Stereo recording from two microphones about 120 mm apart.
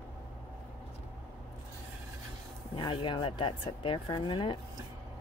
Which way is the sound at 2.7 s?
45° left (ahead or behind).